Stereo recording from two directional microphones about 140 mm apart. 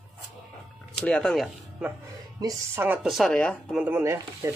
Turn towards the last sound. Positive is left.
turn(degrees=-20)  # may be behind; listen again after turning